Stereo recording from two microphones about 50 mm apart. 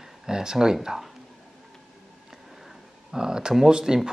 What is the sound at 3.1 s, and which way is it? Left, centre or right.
Speech, centre.